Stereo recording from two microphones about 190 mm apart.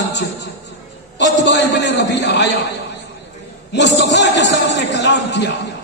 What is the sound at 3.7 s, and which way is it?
A man's voice, 65° left (ahead or behind).